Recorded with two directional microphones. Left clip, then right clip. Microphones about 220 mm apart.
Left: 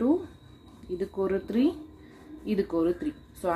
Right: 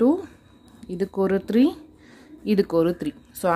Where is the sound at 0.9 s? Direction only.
50° right (ahead or behind).